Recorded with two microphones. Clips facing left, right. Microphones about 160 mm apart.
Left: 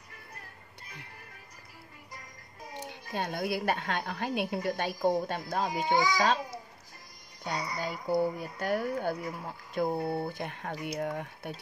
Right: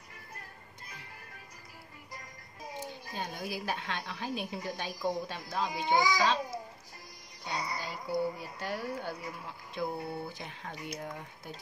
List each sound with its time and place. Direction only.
2.8 s a woman's voice: 65° left (ahead or behind); by 6.3 s 50° left (ahead or behind)
7.4 s a woman's voice: 50° left (ahead or behind)